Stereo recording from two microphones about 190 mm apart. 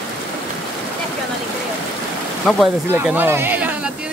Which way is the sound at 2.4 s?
5° right (ahead or behind).